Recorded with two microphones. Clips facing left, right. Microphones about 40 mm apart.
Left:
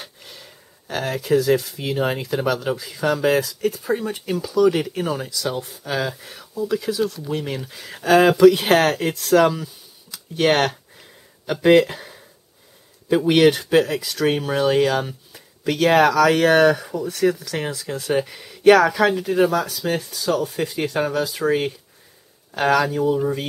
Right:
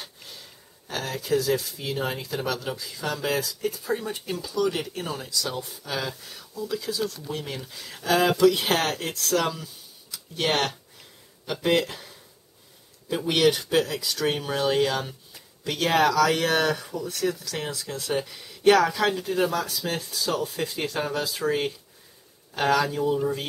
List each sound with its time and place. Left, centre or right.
0.2 s speech: left
4.6 s speech: left
10.1 s a sound: left
13.1 s speech: centre
22.5 s speech: left
22.8 s speech: centre